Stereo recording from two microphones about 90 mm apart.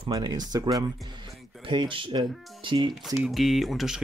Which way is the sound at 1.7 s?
70° right (ahead or behind).